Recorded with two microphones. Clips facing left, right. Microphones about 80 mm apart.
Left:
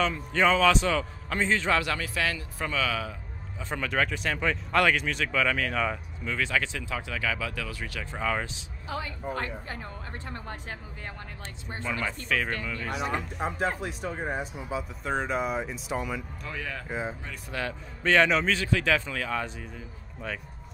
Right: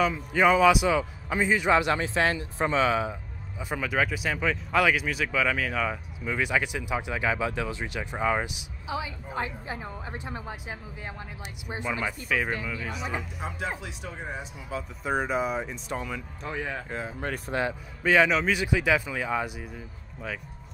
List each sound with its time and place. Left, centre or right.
0.0 s speech: centre
3.6 s speech: centre
6.2 s speech: centre
13.4 s speech: left
14.7 s speech: centre
15.0 s speech: centre
16.4 s speech: right
18.0 s speech: centre